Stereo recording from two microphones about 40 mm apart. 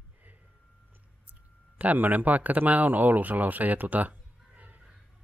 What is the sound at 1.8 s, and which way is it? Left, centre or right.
Speech, right.